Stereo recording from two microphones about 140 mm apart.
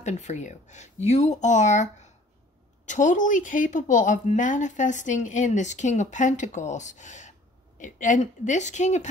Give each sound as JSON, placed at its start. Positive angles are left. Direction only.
{"t": 0.0, "sound": "a woman's voice", "side_deg": 55}